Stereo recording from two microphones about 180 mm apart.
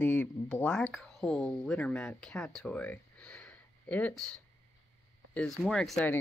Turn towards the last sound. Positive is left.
turn(degrees=5)  # may be behind; listen again after turning